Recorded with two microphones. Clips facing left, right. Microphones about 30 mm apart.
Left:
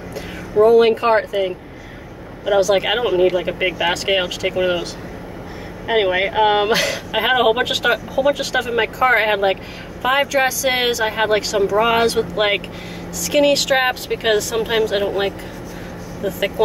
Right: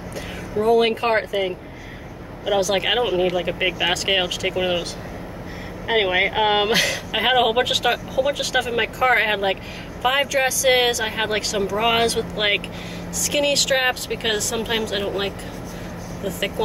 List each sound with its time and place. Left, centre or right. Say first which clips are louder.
0.7 s speech: left 4 dB; centre
5.9 s speech: left 2 dB; centre